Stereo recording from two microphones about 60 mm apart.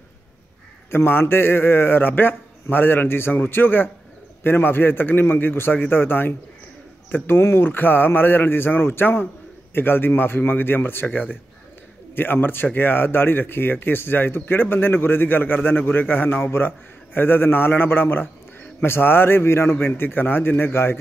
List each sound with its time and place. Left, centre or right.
0.8 s speech: left